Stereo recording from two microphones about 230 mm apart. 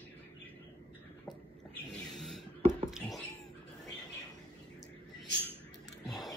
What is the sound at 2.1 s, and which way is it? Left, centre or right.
Writing, centre.